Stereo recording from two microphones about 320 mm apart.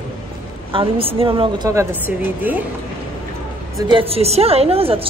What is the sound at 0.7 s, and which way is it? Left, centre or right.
Speech, centre.